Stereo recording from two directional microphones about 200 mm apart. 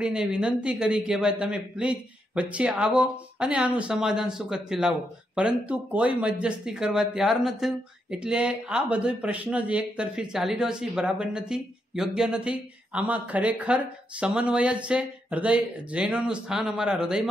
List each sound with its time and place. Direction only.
0.0 s a man's voice: 5° right (ahead or behind)